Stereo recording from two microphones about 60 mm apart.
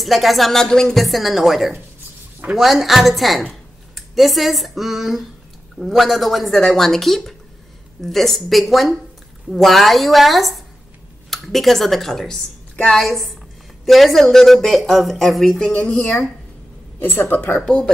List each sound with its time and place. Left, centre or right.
0.0 s speech: centre
12.7 s a woman's voice: centre
13.0 s speech: centre
15.7 s a woman's voice: left
17.6 s speech: centre